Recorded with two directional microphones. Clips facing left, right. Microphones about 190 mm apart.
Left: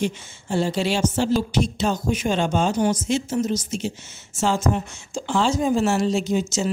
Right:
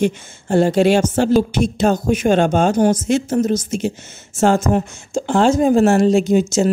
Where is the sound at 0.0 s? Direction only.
55° right (ahead or behind).